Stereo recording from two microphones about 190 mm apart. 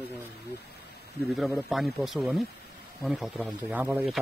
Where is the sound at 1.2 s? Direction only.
Centre (ahead or behind).